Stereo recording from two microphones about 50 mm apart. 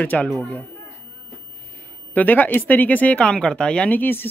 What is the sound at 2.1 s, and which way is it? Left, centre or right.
Speech, left.